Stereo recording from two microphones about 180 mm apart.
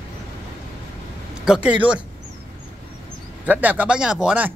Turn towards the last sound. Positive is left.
turn(degrees=-5)  # may be behind; listen again after turning